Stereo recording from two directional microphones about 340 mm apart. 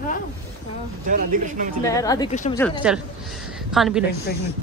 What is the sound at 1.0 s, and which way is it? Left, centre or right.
Speech, right.